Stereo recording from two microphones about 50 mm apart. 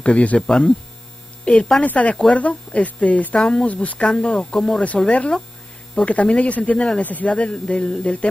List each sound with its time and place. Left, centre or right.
0.0 s speech: left
0.5 s speech: centre
1.4 s a woman's voice: left
3.3 s speech: centre
3.6 s speech: left
4.0 s speech: centre